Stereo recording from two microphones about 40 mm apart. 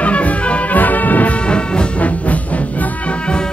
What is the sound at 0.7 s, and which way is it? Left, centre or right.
Music, left.